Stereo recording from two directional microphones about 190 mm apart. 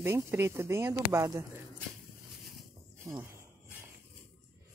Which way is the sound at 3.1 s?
15° right (ahead or behind).